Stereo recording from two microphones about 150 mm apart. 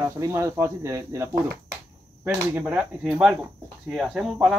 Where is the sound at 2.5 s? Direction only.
10° right (ahead or behind).